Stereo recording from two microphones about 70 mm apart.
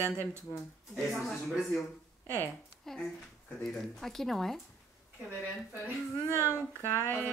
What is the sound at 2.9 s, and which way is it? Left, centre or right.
A woman's voice, centre.